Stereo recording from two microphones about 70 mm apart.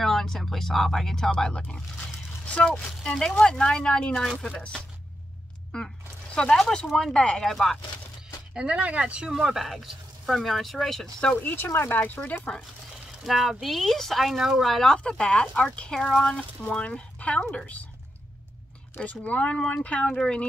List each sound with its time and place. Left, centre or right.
0.0 s speech: centre
6.3 s speech: centre
8.5 s speech: centre
11.4 s speech: left
12.2 s speech: centre
13.2 s speech: centre
18.9 s speech: centre